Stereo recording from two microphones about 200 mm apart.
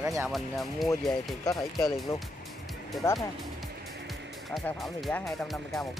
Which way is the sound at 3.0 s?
15° left (ahead or behind).